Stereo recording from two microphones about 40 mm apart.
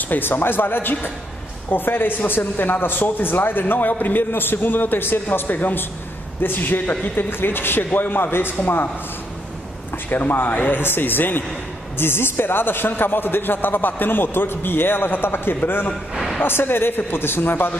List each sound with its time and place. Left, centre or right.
0.1 s speech: left
7.2 s speech: left
10.0 s speech: left
10.8 s speech: left
12.0 s speech: left